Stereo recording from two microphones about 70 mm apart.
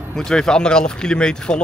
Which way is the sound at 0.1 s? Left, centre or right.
Centre.